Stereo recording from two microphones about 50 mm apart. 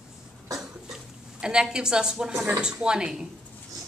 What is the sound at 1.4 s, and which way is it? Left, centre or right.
A woman's voice, centre.